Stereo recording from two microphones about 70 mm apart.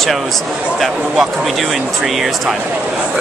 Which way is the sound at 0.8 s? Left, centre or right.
Centre.